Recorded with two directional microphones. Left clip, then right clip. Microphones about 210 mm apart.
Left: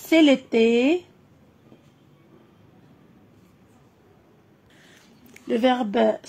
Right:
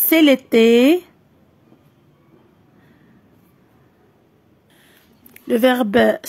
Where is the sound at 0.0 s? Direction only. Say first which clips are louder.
Right 4 dB; 35° right (ahead or behind).